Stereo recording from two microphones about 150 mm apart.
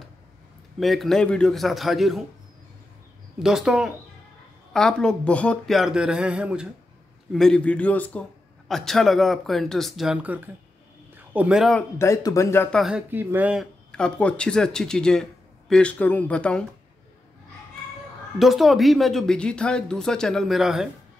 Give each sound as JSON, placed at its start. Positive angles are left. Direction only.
{"t": 0.7, "sound": "speech", "side_deg": 0}
{"t": 3.4, "sound": "speech", "side_deg": -5}
{"t": 7.3, "sound": "speech", "side_deg": 5}
{"t": 12.0, "sound": "speech", "side_deg": 20}
{"t": 12.7, "sound": "speech", "side_deg": 0}
{"t": 13.1, "sound": "speech", "side_deg": -15}
{"t": 13.9, "sound": "speech", "side_deg": 5}
{"t": 18.4, "sound": "speech", "side_deg": 0}